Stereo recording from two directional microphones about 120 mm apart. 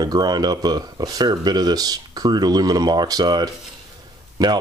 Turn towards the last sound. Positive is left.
turn(degrees=-30)  # may be behind; listen again after turning